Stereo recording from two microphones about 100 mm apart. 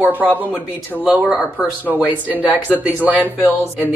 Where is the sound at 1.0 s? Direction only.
5° right (ahead or behind).